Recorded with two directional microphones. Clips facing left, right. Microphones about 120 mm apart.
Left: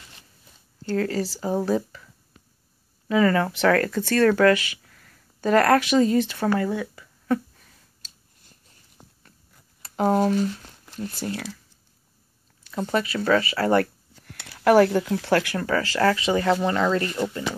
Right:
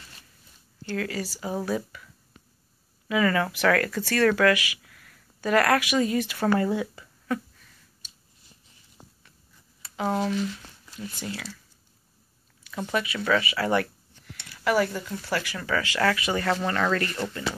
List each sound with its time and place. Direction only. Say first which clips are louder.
0.8 s speech: left 6 dB; 35° left (ahead or behind)
3.1 s speech: left 4 dB; 30° left (ahead or behind)
6.6 s speech: even; 15° right (ahead or behind)
8.5 s a sound: left 1 dB; 50° left (ahead or behind)
9.8 s speech: left 6 dB; 45° left (ahead or behind)
12.6 s speech: left 4 dB; 35° left (ahead or behind)
14.2 s speech: left 7 dB; 60° left (ahead or behind); by 17.5 s 15° left (ahead or behind)